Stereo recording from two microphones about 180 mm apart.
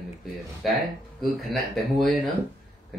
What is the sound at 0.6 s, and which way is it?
Speech, centre (ahead or behind).